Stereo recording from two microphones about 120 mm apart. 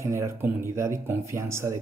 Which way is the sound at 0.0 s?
25° right (ahead or behind).